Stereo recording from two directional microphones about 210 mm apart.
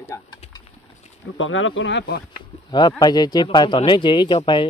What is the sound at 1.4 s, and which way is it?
Speech, 70° left (ahead or behind).